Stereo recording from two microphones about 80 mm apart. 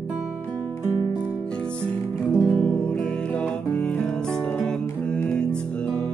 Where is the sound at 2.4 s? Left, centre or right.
Centre.